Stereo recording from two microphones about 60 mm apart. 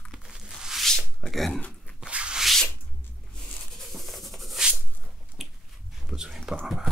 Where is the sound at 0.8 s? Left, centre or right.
Centre.